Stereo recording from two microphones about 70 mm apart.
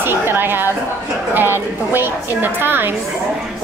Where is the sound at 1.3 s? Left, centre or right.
Right.